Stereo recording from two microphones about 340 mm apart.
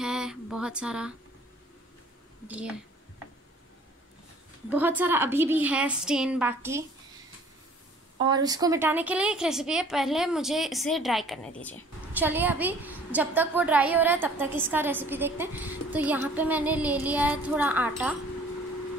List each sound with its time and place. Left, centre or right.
0.0 s a sound: centre
2.4 s a woman's voice: centre
4.6 s a woman's voice: centre
8.2 s a woman's voice: centre